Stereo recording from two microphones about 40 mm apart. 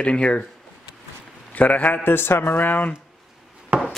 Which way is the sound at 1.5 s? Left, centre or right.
Left.